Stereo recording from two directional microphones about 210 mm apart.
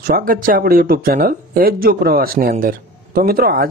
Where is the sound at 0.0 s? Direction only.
40° right (ahead or behind).